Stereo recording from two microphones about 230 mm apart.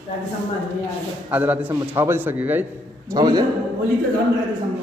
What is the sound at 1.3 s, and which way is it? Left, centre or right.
A man's voice, centre.